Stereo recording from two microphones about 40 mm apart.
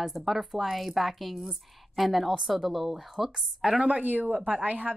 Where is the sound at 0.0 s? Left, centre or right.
Centre.